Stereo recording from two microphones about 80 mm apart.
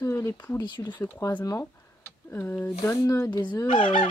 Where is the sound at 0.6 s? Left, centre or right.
Left.